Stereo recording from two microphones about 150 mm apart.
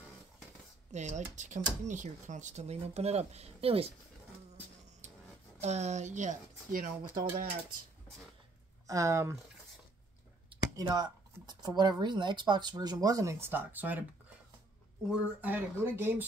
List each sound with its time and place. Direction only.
0.9 s speech: 50° right (ahead or behind)
5.6 s speech: 50° right (ahead or behind); by 7.5 s 70° right (ahead or behind)
8.8 s speech: 20° right (ahead or behind)
10.8 s speech: 30° right (ahead or behind); by 14.0 s 10° right (ahead or behind)
15.0 s speech: 10° right (ahead or behind)